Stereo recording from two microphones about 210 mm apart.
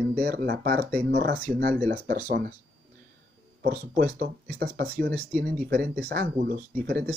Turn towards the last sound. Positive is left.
turn(degrees=-50)  # may be behind; listen again after turning